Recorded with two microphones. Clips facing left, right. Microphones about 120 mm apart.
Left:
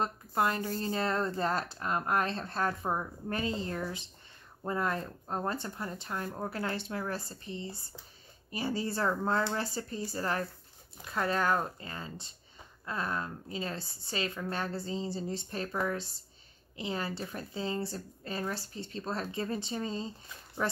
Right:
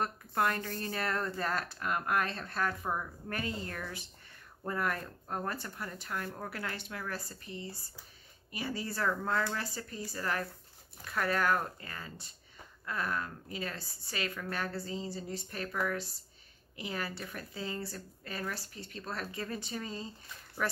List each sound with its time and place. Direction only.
0.0 s speech: 20° left (ahead or behind)